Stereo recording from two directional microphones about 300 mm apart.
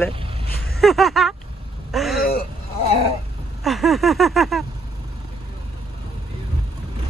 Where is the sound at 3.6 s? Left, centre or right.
Centre.